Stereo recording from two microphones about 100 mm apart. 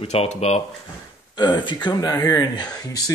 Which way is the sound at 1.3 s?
45° left (ahead or behind).